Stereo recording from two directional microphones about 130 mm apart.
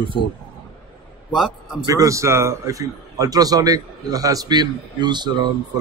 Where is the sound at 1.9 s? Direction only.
25° right (ahead or behind).